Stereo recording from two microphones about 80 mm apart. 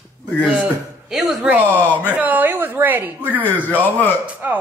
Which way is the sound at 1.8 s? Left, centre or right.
Left.